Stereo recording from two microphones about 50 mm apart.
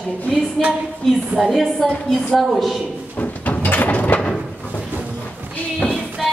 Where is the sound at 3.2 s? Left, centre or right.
Left.